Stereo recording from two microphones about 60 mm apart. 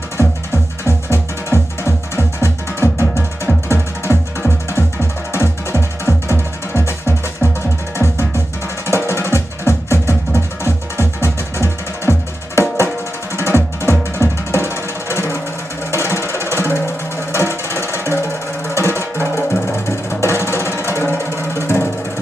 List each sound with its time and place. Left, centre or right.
0.8 s music: left
8.8 s music: left